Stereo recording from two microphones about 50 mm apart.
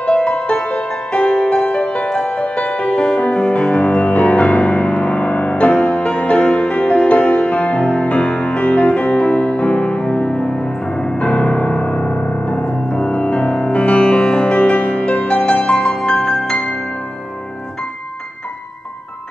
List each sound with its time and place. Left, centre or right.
0.0 s music: centre